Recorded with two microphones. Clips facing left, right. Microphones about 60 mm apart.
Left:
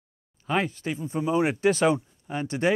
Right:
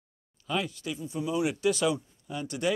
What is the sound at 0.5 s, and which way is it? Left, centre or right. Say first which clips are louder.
Speech: left 5 dB; left.